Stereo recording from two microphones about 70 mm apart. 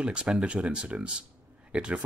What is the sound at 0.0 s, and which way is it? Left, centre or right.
Speech, centre.